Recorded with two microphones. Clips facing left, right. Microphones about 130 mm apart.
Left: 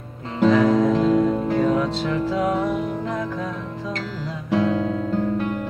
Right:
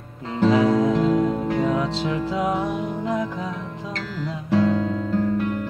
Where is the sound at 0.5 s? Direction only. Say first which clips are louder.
Left 1 dB; 15° right (ahead or behind).